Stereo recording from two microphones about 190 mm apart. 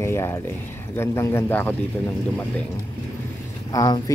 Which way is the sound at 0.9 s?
15° left (ahead or behind).